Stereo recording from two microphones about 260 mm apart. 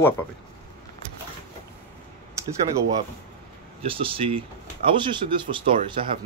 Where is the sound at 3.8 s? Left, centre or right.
Right.